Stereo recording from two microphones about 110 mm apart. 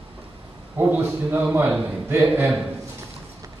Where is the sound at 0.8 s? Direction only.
15° right (ahead or behind).